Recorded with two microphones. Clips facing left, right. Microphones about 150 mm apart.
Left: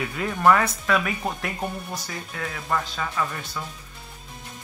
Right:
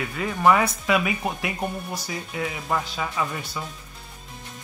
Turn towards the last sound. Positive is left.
turn(degrees=-10)  # may be behind; listen again after turning